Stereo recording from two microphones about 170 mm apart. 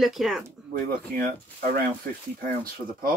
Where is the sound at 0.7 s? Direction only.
60° right (ahead or behind).